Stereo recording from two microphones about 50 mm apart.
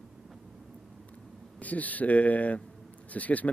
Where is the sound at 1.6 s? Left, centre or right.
Left.